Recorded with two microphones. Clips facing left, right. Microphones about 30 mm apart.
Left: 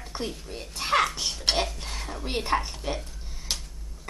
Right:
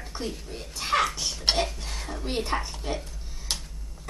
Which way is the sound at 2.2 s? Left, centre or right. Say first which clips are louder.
Left 2 dB; centre.